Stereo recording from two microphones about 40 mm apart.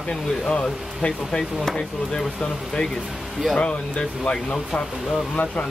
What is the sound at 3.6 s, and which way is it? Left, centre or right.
Speech, left.